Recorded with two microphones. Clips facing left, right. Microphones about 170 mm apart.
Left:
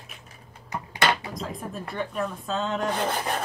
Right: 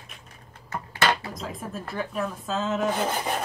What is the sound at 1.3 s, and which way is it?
Speech, centre (ahead or behind).